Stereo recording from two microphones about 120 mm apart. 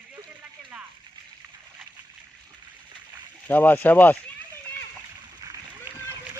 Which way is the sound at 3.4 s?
15° left (ahead or behind).